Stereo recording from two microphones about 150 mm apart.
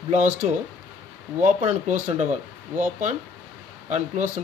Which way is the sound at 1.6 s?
50° right (ahead or behind).